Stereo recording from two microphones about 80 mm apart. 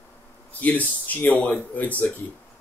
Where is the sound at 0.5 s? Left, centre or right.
Centre.